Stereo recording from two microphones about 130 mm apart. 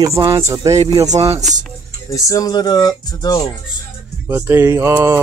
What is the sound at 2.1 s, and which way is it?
Speech, 25° left (ahead or behind).